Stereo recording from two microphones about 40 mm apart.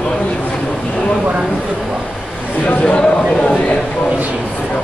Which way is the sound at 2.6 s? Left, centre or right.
Left.